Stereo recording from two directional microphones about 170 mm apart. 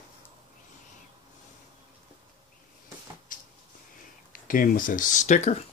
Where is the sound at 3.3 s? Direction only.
50° left (ahead or behind).